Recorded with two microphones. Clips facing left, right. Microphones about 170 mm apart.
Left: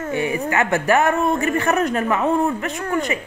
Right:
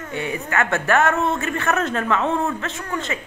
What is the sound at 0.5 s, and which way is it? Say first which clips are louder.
Speech: left 1 dB; 20° left (ahead or behind).